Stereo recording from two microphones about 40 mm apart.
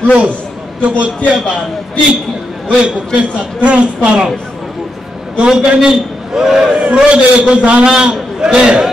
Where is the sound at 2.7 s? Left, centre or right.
Right.